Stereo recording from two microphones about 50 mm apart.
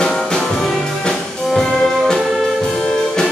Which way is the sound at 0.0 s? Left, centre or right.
Centre.